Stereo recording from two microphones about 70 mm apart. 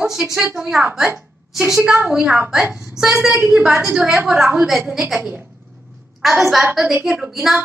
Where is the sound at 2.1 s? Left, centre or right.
Centre.